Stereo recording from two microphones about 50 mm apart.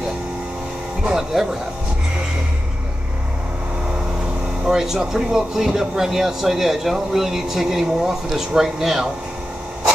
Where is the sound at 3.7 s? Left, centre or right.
Centre.